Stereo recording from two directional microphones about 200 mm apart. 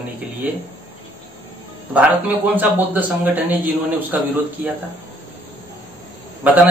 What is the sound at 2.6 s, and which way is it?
A man's voice, 10° right (ahead or behind).